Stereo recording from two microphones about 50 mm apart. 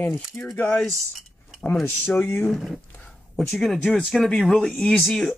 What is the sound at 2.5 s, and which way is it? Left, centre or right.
Speech, centre.